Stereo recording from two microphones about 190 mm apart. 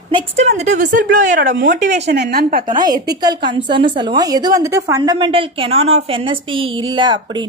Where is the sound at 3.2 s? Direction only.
20° right (ahead or behind).